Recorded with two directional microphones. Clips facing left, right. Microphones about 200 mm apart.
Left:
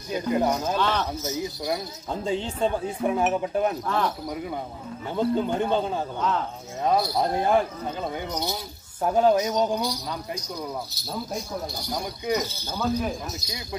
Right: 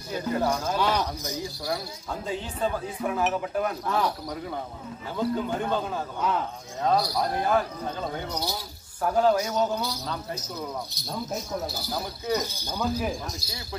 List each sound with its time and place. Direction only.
0.1 s a man's voice: 15° left (ahead or behind)
0.7 s speech: 10° right (ahead or behind)
1.4 s speech: 20° left (ahead or behind)
3.8 s speech: 5° right (ahead or behind)
5.1 s speech: 25° left (ahead or behind)
6.8 s a man's voice: 15° left (ahead or behind)
9.0 s a man's voice: 20° left (ahead or behind)
11.0 s speech: centre (ahead or behind)